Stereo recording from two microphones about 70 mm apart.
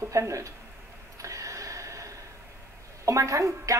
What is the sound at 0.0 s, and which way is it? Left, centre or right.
Speech, right.